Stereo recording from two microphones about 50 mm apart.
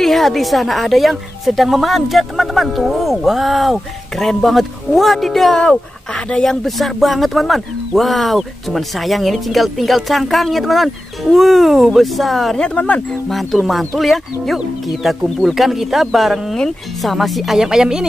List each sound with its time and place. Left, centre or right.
0.0 s speech: centre
5.6 s speech: centre
6.4 s speech: centre
12.7 s speech: left
13.3 s speech: centre